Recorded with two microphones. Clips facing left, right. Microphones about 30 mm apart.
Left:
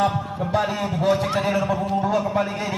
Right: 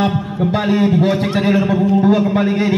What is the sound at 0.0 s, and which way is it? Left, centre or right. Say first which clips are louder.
A man's voice: right 5 dB; right.